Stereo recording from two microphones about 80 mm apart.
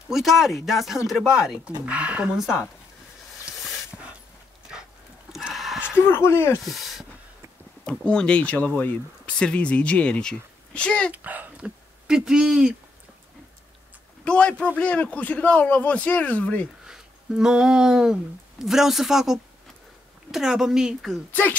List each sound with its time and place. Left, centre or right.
0.1 s speech: centre
3.5 s dog: centre
3.9 s dog: centre
5.3 s a sound: centre
5.9 s speech: left
6.6 s a sound: centre
8.0 s speech: centre
11.1 s speech: right
12.1 s speech: centre
14.2 s speech: centre
16.8 s a sound: centre
18.6 s speech: centre
21.3 s speech: left